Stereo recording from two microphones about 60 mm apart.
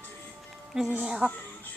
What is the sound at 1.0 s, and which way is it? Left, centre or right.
Speech, centre.